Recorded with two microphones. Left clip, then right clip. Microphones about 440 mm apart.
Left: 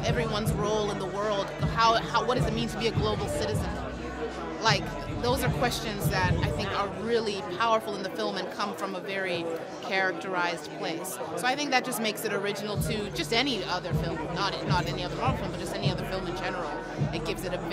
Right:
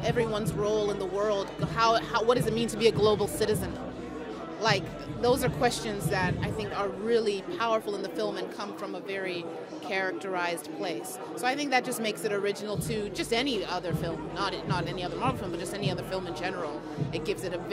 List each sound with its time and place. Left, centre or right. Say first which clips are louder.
0.0 s music: right 1 dB; right
4.6 s speech: left 1 dB; right
9.9 s speech: left 3 dB; right